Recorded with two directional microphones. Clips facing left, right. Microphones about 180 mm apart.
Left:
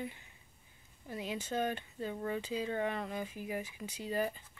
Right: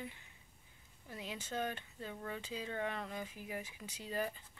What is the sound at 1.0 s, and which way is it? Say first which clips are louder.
Speech: left 6 dB; 15° left (ahead or behind).